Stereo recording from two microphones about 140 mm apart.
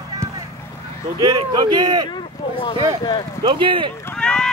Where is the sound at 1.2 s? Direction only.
25° right (ahead or behind).